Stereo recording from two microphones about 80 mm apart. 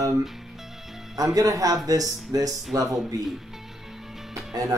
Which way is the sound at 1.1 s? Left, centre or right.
Right.